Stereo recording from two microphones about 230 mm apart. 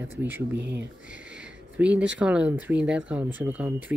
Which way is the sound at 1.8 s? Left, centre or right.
Centre.